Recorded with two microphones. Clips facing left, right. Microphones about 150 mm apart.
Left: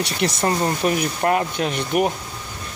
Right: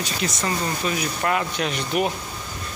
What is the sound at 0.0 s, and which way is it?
Speech, 60° left (ahead or behind).